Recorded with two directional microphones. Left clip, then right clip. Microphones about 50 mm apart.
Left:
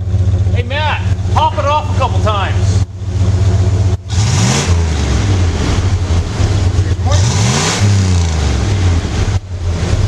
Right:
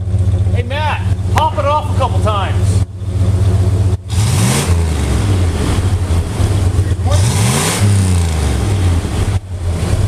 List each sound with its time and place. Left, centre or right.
0.7 s vehicle: centre
2.0 s speech: centre
4.2 s vehicle: centre
7.1 s vehicle: centre
8.9 s boat: left